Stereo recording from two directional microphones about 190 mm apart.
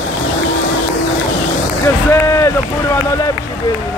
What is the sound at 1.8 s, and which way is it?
Speech, 15° left (ahead or behind).